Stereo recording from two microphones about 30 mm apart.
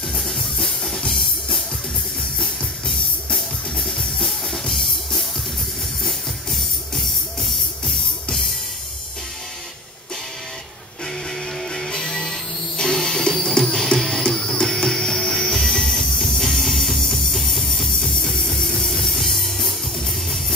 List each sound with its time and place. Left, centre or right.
0.2 s drum: centre
0.9 s drum kit: centre
3.3 s music: centre
7.8 s music: centre
11.9 s music: centre